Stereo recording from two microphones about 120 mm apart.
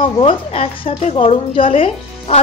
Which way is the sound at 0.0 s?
50° left (ahead or behind).